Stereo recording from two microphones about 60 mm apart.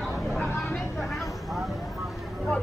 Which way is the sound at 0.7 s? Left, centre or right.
Centre.